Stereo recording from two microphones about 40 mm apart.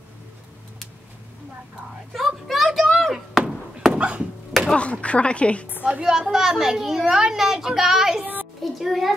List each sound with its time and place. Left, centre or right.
2.1 s a child's voice: centre
2.9 s a sound: centre
3.9 s dog: right
4.5 s chop: centre
5.0 s a woman's voice: left
6.0 s a child's voice: centre
8.7 s a child's voice: centre